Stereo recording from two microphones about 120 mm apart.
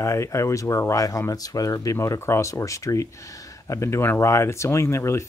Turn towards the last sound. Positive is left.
turn(degrees=25)  # may be behind; listen again after turning